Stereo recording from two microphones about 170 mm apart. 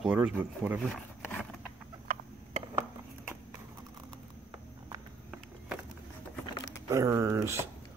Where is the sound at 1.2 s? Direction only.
10° left (ahead or behind).